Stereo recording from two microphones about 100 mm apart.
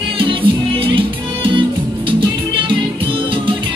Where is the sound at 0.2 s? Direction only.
60° right (ahead or behind).